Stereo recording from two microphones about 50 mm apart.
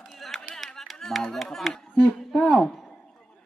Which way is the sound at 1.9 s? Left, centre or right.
Left.